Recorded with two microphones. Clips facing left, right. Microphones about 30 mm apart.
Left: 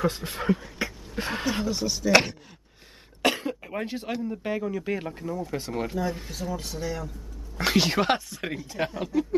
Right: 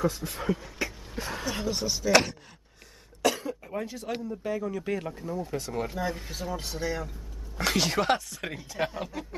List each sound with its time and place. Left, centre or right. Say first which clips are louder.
0.0 s speech: left 2 dB; left
1.7 s speech: left 2 dB; centre
2.0 s speech: left 2 dB; centre
3.2 s throat clearing: left 2 dB; left
4.3 s speech: even; left
4.6 s speech: left 2 dB; centre
5.9 s speech: left 2 dB; centre
7.5 s speech: left 3 dB; centre
8.6 s speech: right 1 dB; centre